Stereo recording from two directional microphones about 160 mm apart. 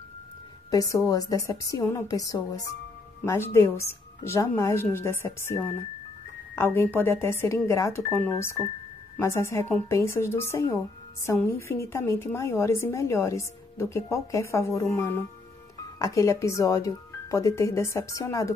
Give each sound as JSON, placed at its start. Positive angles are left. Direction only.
{"t": 0.7, "sound": "speech", "side_deg": 25}